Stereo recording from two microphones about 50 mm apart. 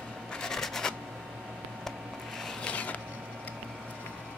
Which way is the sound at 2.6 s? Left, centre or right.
Left.